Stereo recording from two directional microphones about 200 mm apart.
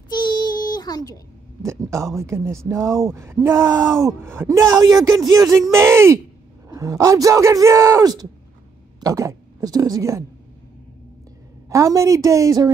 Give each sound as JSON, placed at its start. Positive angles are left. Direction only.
{"t": 0.1, "sound": "child singing", "side_deg": 20}
{"t": 1.6, "sound": "a woman's voice", "side_deg": -15}
{"t": 11.7, "sound": "speech", "side_deg": -15}